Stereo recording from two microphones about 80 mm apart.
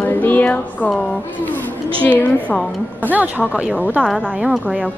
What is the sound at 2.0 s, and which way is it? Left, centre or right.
Speech, centre.